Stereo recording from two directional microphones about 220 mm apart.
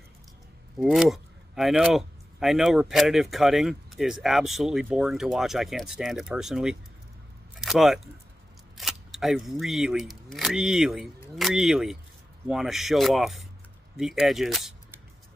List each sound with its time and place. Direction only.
0.7 s speech: centre (ahead or behind)
7.5 s a sound: centre (ahead or behind)
8.7 s speech: centre (ahead or behind)